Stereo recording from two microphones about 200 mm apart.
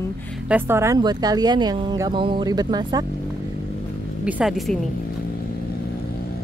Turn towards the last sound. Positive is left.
turn(degrees=0)  # may be behind; listen again after turning